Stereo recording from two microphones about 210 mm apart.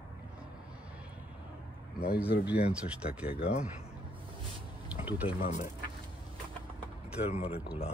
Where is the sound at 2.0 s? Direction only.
50° left (ahead or behind).